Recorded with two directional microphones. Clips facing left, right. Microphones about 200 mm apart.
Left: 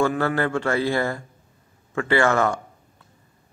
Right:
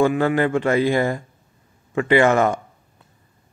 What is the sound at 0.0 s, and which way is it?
Speech, 15° right (ahead or behind).